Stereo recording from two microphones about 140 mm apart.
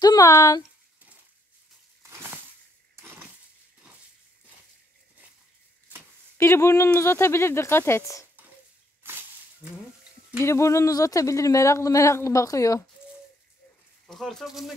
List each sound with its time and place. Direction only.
0.0 s speech: 25° left (ahead or behind)
2.0 s a sound: 20° right (ahead or behind)
6.3 s speech: 20° left (ahead or behind)
9.0 s whip: 15° right (ahead or behind)
10.4 s speech: 20° left (ahead or behind)
14.0 s speech: centre (ahead or behind)